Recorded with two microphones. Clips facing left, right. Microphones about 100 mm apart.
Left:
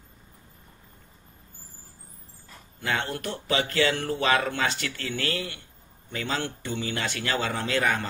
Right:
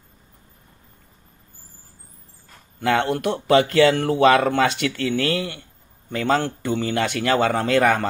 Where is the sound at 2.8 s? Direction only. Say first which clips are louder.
Right 9 dB; 60° right (ahead or behind).